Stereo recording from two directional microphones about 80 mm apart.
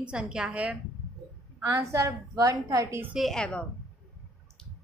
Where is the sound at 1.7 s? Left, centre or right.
Right.